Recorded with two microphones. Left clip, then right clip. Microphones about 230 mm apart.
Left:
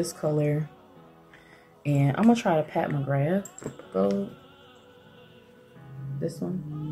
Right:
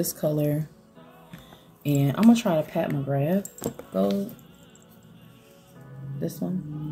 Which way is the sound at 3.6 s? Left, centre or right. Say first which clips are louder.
Right 6 dB; right.